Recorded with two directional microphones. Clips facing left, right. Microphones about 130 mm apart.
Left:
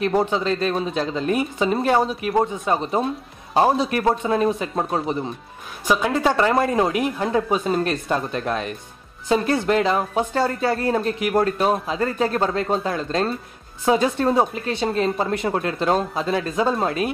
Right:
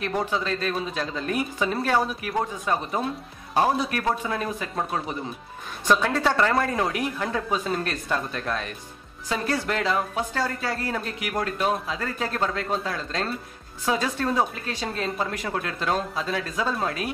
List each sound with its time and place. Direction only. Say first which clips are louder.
0.0 s speech: left 6 dB; 25° left (ahead or behind)
5.9 s speech: left 2 dB; 15° left (ahead or behind)